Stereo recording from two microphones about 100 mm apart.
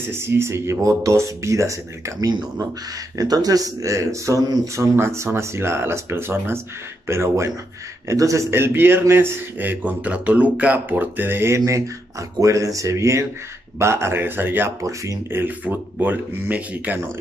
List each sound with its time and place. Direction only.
0.1 s a man's voice: 25° right (ahead or behind)
14.8 s speech: 30° right (ahead or behind)
15.4 s speech: 20° right (ahead or behind)